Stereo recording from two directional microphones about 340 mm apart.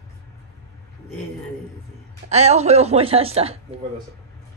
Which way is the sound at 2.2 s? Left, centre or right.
Centre.